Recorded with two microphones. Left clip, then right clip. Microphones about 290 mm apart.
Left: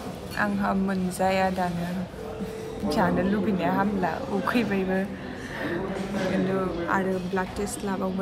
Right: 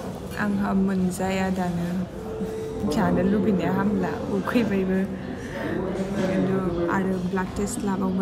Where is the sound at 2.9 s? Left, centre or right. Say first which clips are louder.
Right 1 dB; centre.